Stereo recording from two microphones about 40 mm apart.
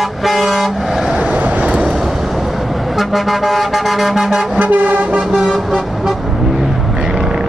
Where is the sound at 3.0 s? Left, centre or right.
Centre.